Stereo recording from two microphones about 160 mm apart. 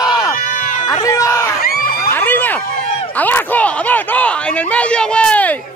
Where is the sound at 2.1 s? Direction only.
10° left (ahead or behind).